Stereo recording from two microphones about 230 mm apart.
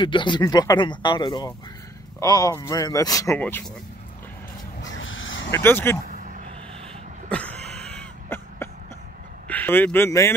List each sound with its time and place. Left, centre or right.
0.0 s speech: left
4.9 s a sound: left
5.5 s speech: centre
6.0 s vehicle: right
7.2 s cough: centre
9.5 s speech: centre